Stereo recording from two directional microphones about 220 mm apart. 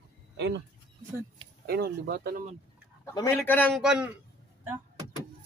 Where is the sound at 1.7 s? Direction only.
45° right (ahead or behind).